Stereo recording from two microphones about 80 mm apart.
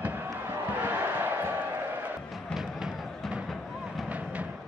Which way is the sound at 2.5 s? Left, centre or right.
Centre.